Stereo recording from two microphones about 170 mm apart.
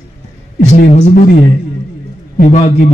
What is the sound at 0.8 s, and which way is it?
Speech, 40° left (ahead or behind).